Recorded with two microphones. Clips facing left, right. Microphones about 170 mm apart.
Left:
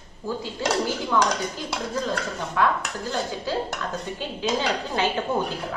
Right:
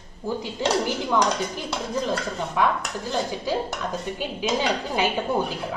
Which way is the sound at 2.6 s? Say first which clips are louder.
Even; 15° right (ahead or behind).